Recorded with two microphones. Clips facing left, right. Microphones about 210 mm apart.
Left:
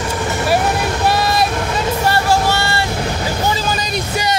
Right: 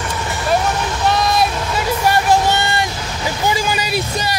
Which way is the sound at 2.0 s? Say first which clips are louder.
Right 2 dB; 15° right (ahead or behind).